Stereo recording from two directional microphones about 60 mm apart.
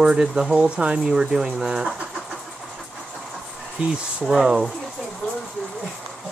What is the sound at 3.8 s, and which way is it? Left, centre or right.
Speech, centre.